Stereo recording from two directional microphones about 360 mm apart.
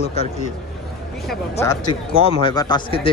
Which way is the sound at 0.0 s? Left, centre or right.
Centre.